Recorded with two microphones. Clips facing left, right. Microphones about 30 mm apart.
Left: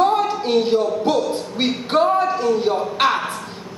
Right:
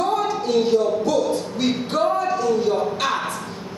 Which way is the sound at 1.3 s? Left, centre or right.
Left.